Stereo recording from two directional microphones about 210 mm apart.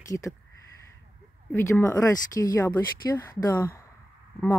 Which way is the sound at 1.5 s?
10° left (ahead or behind).